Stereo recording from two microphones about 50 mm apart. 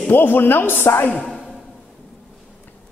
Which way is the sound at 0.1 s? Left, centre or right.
Left.